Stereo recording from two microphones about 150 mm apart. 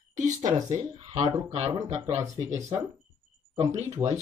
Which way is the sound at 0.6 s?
50° right (ahead or behind).